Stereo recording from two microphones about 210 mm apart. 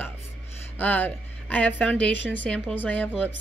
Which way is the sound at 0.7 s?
10° left (ahead or behind).